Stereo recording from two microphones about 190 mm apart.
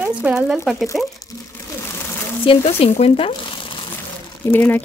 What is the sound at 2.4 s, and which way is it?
Speech, 30° left (ahead or behind).